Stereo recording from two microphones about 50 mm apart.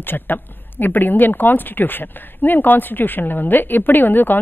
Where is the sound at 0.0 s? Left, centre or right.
Left.